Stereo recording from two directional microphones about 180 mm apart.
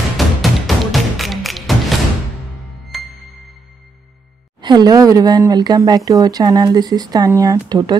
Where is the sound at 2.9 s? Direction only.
Centre (ahead or behind).